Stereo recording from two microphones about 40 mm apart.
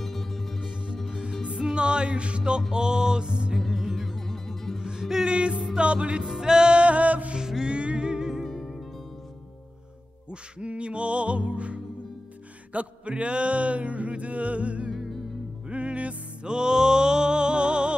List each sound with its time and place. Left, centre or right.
0.0 s music: centre
1.1 s music: right
3.6 s music: centre
5.2 s music: right
6.2 s music: centre; by 7.3 s right
7.3 s music: centre
7.7 s music: right
8.5 s music: centre
10.6 s music: right
14.9 s music: centre
15.7 s music: right
16.4 s music: centre